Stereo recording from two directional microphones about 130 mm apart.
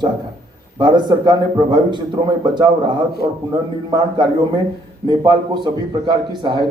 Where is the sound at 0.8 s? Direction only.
35° right (ahead or behind).